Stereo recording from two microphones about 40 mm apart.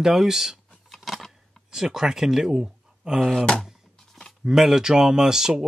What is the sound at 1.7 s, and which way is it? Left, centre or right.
Speech, centre.